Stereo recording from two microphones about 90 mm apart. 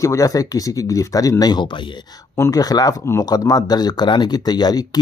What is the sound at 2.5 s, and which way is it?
Speech, 45° left (ahead or behind).